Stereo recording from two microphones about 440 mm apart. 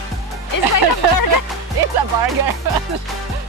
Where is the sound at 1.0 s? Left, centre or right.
Right.